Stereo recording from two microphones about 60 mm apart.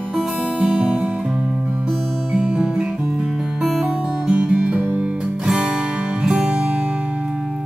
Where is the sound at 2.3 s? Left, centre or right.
Centre.